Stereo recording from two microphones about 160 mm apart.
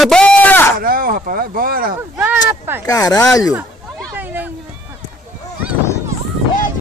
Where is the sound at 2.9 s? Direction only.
20° left (ahead or behind).